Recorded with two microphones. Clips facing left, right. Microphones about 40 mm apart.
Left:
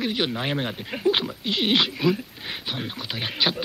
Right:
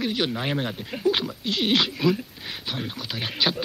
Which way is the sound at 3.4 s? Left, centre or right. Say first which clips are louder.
Even; centre.